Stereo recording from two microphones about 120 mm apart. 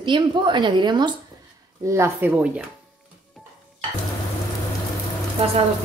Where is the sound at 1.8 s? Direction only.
25° right (ahead or behind).